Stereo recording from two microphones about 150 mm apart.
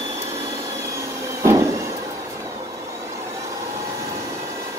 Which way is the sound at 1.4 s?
20° right (ahead or behind).